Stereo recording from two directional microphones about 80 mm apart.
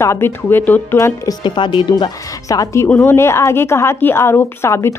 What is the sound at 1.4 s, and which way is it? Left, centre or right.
Speech, left.